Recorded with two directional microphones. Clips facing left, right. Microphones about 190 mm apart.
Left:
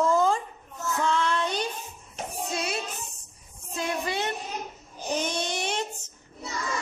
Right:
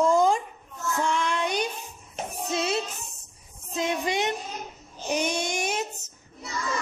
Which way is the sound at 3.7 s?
20° right (ahead or behind).